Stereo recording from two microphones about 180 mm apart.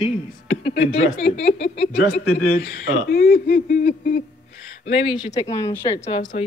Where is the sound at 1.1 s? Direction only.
30° left (ahead or behind).